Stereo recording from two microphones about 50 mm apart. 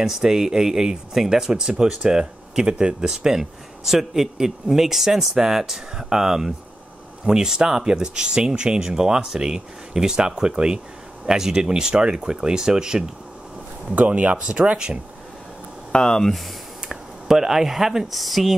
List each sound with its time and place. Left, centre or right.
0.0 s speech: centre
13.9 s speech: right
15.9 s speech: centre
16.9 s speech: centre